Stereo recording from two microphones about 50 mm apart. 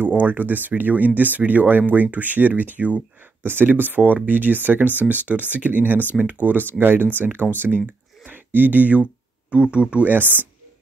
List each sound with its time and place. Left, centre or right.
0.0 s speech: right
3.4 s speech: right
10.0 s speech: right